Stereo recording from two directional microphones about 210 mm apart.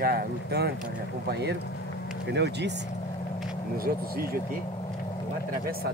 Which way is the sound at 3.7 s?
45° right (ahead or behind).